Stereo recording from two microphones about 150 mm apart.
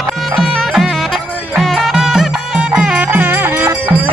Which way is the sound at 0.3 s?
Centre (ahead or behind).